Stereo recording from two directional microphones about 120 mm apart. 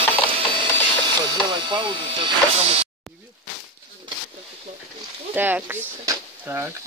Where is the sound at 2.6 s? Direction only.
60° right (ahead or behind).